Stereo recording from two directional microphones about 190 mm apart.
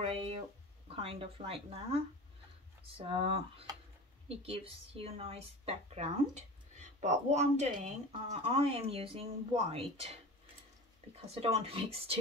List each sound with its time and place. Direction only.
0.0 s a sound: 30° right (ahead or behind)
0.8 s a woman's voice: 30° right (ahead or behind)
11.1 s a woman's voice: 30° right (ahead or behind)